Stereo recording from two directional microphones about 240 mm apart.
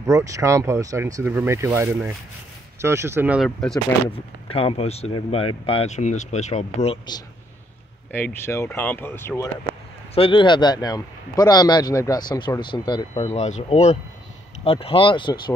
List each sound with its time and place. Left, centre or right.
0.0 s speech: centre
4.1 s speech: left
8.1 s speech: centre
10.1 s speech: left